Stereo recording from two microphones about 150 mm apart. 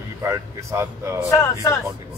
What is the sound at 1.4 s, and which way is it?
Speech, 20° left (ahead or behind).